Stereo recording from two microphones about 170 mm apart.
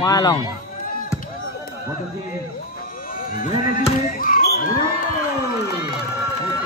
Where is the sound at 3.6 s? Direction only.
55° left (ahead or behind).